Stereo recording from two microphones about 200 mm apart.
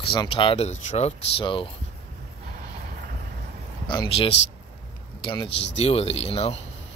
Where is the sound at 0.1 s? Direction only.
25° left (ahead or behind).